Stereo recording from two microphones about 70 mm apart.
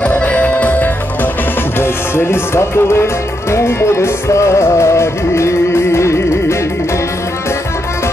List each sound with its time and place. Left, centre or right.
0.0 s music: centre; by 6.1 s left